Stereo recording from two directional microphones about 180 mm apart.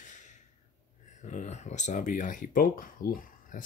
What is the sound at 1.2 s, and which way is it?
Speech, 40° left (ahead or behind).